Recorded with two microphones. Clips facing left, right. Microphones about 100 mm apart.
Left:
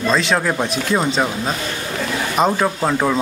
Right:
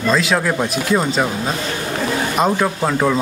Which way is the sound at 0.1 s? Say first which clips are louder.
Right 2 dB; centre (ahead or behind).